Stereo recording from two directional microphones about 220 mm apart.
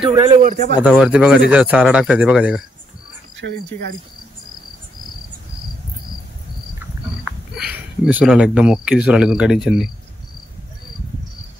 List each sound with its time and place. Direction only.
0.0 s a man's voice: 25° right (ahead or behind)
0.4 s a man's voice: 35° right (ahead or behind)
0.8 s speech: 5° right (ahead or behind)
3.3 s speech: 55° right (ahead or behind)
7.2 s speech: 5° right (ahead or behind)